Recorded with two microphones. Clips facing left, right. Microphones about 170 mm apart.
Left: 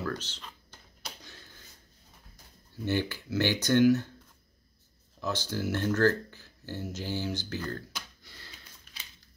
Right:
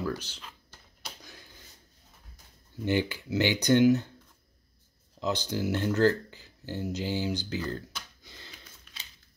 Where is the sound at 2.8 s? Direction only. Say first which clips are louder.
Right 2 dB; 15° right (ahead or behind).